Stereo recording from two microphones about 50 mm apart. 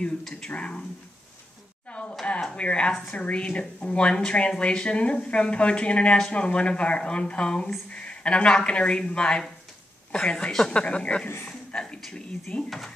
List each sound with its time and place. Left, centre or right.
0.4 s speech: centre
1.9 s a sound: left
2.5 s speech: left
11.4 s a sound: centre
12.1 s speech: centre
12.6 s speech: centre